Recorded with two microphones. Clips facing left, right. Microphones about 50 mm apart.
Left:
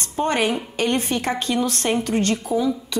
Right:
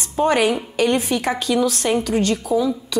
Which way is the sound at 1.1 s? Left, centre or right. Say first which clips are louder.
Right 3 dB; left.